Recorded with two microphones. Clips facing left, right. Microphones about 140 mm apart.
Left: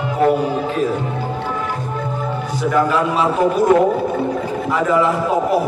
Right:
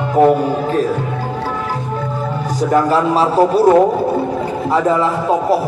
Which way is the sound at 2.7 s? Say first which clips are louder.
Right 3 dB; 35° right (ahead or behind).